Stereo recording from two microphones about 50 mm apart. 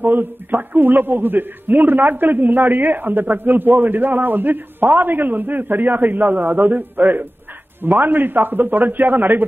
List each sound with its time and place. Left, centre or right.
0.0 s a man's voice: right